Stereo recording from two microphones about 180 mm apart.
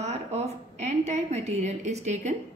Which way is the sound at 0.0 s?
40° right (ahead or behind).